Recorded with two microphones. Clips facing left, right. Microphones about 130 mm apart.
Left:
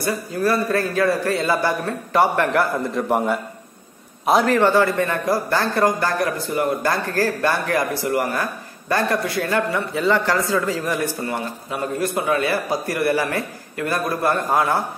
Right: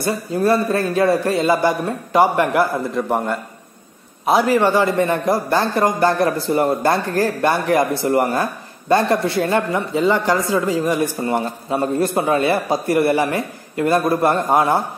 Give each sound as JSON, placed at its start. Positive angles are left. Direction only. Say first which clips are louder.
{"t": 0.0, "sound": "a man's voice", "louder": "right 3 dB", "side_deg": -25}
{"t": 2.9, "sound": "a man's voice", "louder": "even", "side_deg": 0}
{"t": 4.6, "sound": "a man's voice", "louder": "right 1 dB", "side_deg": -15}